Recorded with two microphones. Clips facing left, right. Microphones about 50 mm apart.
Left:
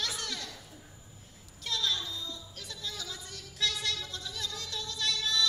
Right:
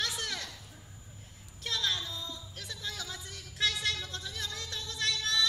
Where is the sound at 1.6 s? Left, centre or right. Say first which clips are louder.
Even; right.